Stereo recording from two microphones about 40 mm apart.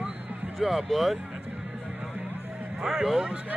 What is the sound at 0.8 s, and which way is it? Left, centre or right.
Speech, centre.